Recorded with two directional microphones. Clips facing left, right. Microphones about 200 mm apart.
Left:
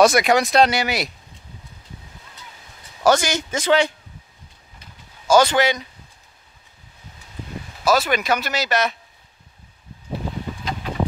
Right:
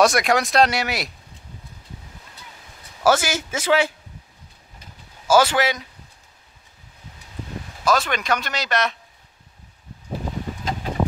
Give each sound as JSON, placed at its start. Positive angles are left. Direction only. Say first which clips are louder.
{"t": 0.0, "sound": "speech", "louder": "left 3 dB", "side_deg": 0}
{"t": 3.0, "sound": "speech", "louder": "left 1 dB", "side_deg": -5}
{"t": 5.3, "sound": "speech", "louder": "left 2 dB", "side_deg": -5}
{"t": 7.8, "sound": "speech", "louder": "left 3 dB", "side_deg": 5}